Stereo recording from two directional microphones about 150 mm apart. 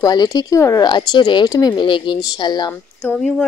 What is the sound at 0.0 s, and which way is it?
Speech, 25° left (ahead or behind).